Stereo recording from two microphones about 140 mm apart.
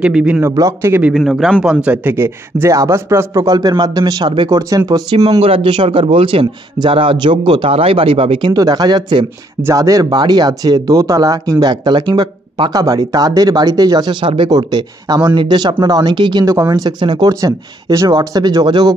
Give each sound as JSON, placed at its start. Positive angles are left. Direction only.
{"t": 0.0, "sound": "speech", "side_deg": -10}
{"t": 0.4, "sound": "speech", "side_deg": -20}
{"t": 1.1, "sound": "a man's voice", "side_deg": 0}
{"t": 4.5, "sound": "speech", "side_deg": -25}
{"t": 5.4, "sound": "a man's voice", "side_deg": -40}